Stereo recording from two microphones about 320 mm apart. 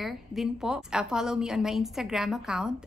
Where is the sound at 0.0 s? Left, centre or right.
Centre.